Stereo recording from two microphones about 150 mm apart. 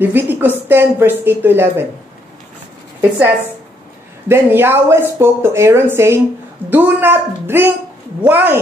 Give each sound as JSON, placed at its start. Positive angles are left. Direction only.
{"t": 0.0, "sound": "speech", "side_deg": -15}
{"t": 4.3, "sound": "speech", "side_deg": -15}